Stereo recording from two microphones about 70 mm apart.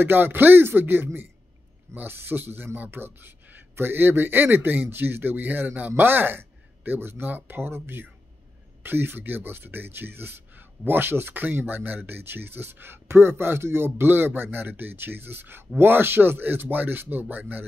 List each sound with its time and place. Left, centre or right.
0.0 s speech: right